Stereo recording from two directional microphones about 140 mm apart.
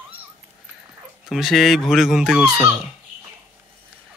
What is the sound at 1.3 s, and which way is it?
Speech, centre (ahead or behind).